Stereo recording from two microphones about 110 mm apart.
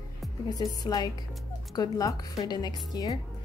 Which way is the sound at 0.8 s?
35° left (ahead or behind).